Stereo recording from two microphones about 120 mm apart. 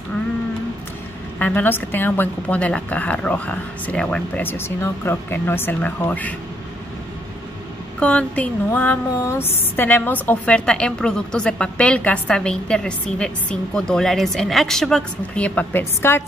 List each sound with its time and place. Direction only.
1.4 s speech: 15° left (ahead or behind)
4.5 s speech: 20° left (ahead or behind)
8.0 s a woman's voice: 10° left (ahead or behind)